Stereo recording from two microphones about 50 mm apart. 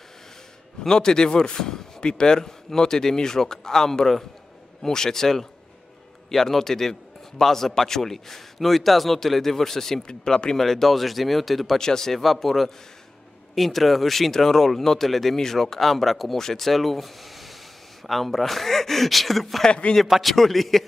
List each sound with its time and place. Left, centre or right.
0.8 s a man's voice: centre
19.6 s speech: centre
20.0 s a man's voice: centre